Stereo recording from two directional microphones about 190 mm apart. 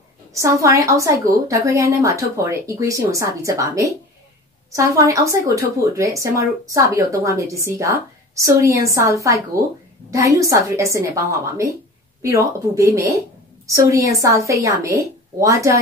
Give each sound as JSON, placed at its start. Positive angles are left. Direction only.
{"t": 0.3, "sound": "a woman's voice", "side_deg": -15}
{"t": 12.2, "sound": "a woman's voice", "side_deg": -15}